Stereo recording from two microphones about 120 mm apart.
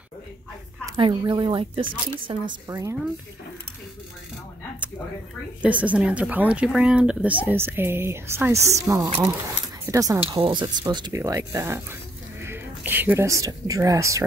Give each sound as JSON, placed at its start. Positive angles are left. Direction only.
{"t": 0.9, "sound": "speech", "side_deg": -40}
{"t": 2.7, "sound": "speech", "side_deg": -25}
{"t": 5.6, "sound": "a woman's voice", "side_deg": -10}
{"t": 10.2, "sound": "speech", "side_deg": -45}